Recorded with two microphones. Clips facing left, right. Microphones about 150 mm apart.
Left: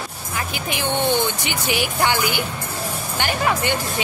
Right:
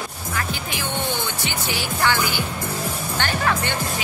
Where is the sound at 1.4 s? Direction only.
15° left (ahead or behind).